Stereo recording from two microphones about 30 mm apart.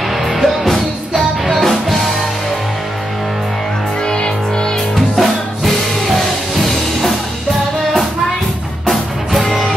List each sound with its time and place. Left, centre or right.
0.1 s music: centre
4.0 s music: left
4.9 s music: centre